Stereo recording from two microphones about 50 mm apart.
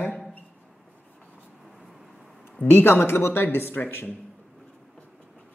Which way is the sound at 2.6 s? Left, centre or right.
Left.